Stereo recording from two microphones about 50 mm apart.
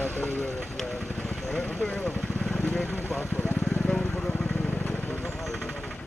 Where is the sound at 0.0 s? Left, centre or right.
Left.